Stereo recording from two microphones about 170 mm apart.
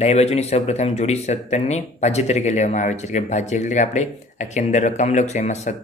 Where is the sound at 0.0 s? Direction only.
40° left (ahead or behind).